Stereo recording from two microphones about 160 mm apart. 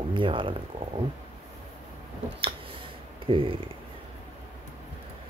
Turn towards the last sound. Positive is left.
turn(degrees=-35)  # may be behind; listen again after turning